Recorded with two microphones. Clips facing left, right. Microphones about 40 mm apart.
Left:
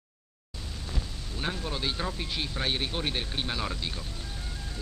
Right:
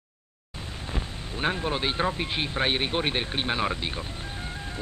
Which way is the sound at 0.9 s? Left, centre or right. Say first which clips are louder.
Right 6 dB; right.